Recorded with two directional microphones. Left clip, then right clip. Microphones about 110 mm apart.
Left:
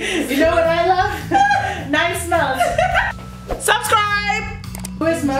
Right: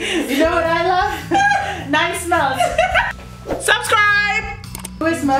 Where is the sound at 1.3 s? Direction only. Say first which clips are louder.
Left 1 dB; 35° right (ahead or behind).